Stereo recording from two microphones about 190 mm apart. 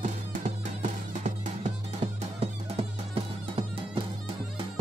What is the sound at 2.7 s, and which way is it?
Music, 30° right (ahead or behind).